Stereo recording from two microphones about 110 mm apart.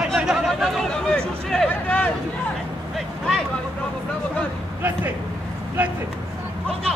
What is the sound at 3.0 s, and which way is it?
Vehicle, centre (ahead or behind).